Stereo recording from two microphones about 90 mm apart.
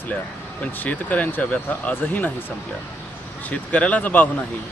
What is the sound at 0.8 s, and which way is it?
Speech, 15° left (ahead or behind).